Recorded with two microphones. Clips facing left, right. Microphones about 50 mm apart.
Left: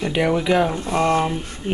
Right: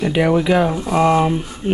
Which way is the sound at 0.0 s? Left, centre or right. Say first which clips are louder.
Right 4 dB; centre.